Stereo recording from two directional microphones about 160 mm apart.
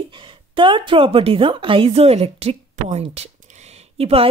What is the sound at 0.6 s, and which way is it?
A woman's voice, 30° right (ahead or behind).